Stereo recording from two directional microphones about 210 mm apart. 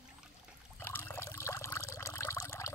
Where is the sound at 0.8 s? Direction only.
10° left (ahead or behind).